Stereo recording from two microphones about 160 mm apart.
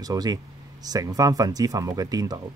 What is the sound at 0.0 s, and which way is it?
Speech, 25° right (ahead or behind).